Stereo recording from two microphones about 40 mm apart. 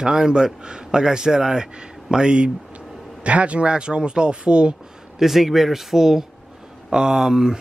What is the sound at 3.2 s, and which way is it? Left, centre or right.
Speech, right.